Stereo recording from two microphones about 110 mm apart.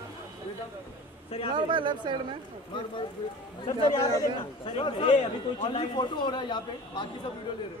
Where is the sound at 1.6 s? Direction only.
45° right (ahead or behind).